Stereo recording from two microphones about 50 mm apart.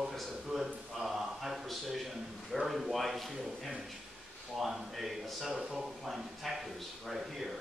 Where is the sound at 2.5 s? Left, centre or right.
Centre.